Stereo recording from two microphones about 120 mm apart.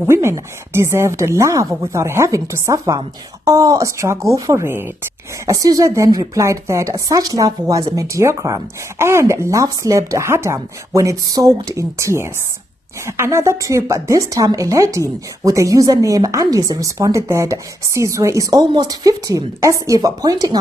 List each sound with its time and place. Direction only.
0.0 s a woman's voice: 20° right (ahead or behind)